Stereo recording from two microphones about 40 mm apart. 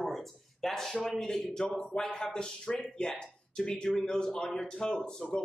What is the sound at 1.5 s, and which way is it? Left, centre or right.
Speech, left.